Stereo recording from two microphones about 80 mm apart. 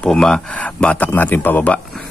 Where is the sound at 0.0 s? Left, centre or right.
Centre.